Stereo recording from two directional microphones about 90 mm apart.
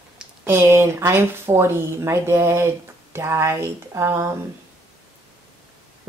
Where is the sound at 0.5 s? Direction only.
25° right (ahead or behind).